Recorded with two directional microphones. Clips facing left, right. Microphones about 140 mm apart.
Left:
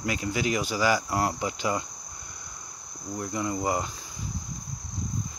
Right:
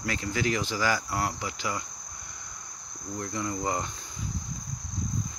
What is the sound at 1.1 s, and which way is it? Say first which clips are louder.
Cricket: left 4 dB; 25° left (ahead or behind).